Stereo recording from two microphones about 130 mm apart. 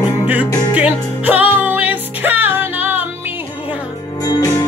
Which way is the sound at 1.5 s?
15° right (ahead or behind).